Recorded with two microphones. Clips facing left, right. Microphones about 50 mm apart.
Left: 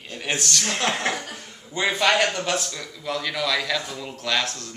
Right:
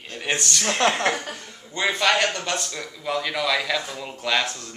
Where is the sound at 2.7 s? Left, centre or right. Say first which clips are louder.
Right 2 dB; centre.